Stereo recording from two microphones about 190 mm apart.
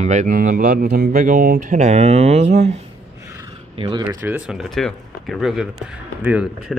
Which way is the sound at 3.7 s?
25° right (ahead or behind).